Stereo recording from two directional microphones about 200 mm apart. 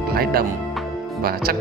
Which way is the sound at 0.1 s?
50° right (ahead or behind).